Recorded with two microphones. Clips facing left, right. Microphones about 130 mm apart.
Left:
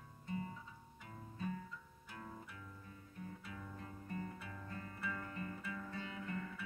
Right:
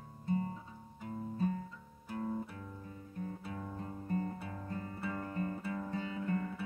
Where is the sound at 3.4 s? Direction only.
40° right (ahead or behind).